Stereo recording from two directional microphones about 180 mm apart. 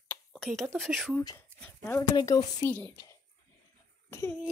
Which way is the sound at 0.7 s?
Centre (ahead or behind).